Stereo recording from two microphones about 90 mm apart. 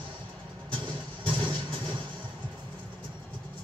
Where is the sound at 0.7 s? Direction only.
65° right (ahead or behind).